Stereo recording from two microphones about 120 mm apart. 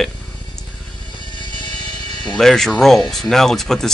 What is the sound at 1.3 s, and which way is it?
Music, 40° left (ahead or behind).